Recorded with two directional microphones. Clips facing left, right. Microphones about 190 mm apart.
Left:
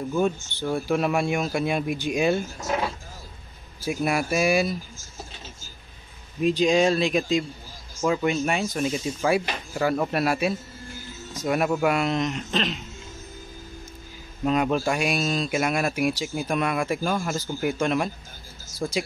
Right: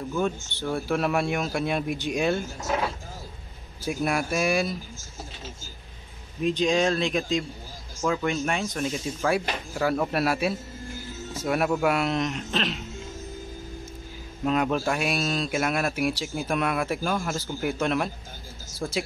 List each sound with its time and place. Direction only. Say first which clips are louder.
0.5 s speech: left 2 dB; centre (ahead or behind)
3.8 s speech: left 2 dB; centre (ahead or behind)
6.4 s speech: left 3 dB; 10° left (ahead or behind)
14.4 s speech: left 2 dB; centre (ahead or behind)